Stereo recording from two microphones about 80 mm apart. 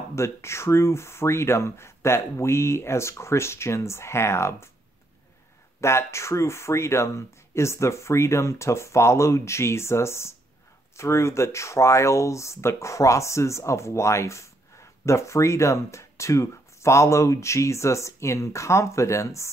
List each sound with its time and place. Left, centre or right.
0.1 s speech: left
5.8 s speech: left